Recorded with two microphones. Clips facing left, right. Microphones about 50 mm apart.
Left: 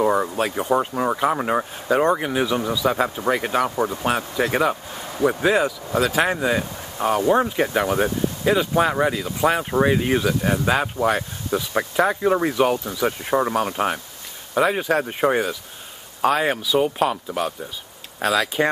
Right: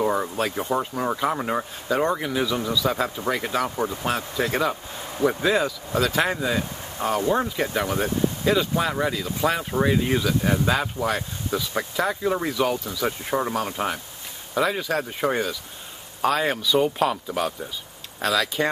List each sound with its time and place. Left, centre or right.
0.0 s speech: centre
6.4 s speech: left
13.0 s speech: centre
18.2 s speech: centre